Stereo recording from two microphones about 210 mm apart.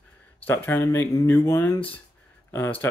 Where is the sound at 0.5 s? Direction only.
10° left (ahead or behind).